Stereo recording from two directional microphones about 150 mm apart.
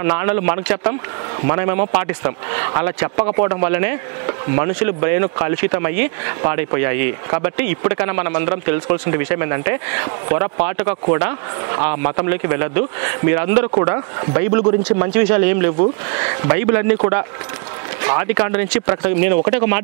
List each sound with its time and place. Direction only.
0.0 s speech: 15° right (ahead or behind)
13.7 s speech: 25° right (ahead or behind)